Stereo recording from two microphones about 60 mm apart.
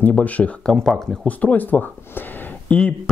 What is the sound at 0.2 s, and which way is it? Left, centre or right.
Speech, left.